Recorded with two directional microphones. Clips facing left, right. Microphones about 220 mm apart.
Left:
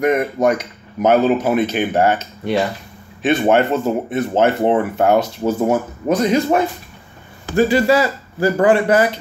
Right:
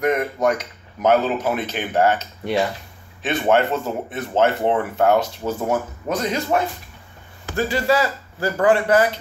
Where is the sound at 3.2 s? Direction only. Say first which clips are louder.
Left 4 dB; 15° left (ahead or behind).